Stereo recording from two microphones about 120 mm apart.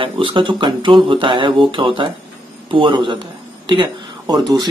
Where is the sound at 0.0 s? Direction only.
45° right (ahead or behind).